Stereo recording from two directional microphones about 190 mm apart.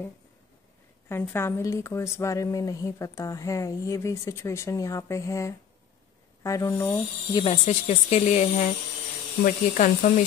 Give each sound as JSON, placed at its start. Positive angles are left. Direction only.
{"t": 1.0, "sound": "a woman's voice", "side_deg": 10}
{"t": 7.4, "sound": "speech", "side_deg": 35}